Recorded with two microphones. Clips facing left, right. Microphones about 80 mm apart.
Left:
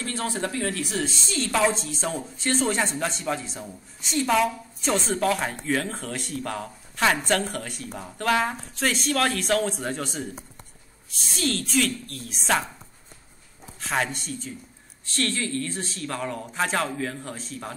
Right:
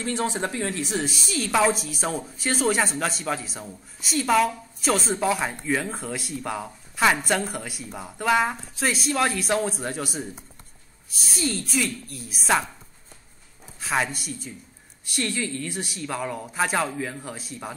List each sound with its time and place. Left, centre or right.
0.0 s speech: right; by 5.2 s centre
5.2 s a woman's voice: centre
13.7 s a woman's voice: centre